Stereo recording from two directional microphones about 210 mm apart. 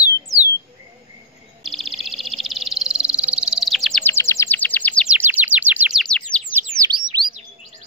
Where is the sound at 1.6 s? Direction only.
Centre (ahead or behind).